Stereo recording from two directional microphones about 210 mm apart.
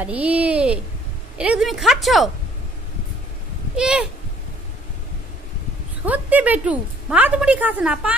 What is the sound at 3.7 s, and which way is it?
Speech, 5° right (ahead or behind).